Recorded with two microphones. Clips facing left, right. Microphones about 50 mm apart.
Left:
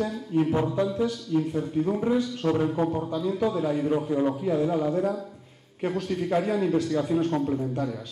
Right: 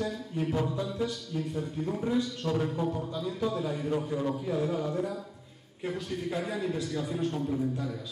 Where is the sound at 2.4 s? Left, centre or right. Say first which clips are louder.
Left 8 dB; left.